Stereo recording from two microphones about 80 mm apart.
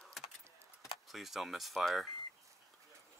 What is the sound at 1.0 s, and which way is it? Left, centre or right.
Speech, centre.